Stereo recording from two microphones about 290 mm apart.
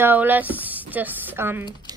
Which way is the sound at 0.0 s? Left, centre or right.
Centre.